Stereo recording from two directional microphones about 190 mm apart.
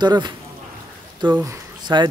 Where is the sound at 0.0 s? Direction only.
25° right (ahead or behind).